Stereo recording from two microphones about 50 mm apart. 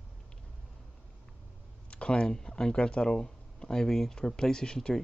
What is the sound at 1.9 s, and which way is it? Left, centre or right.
Speech, left.